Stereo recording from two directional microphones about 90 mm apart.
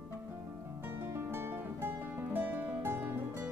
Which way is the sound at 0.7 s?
25° right (ahead or behind).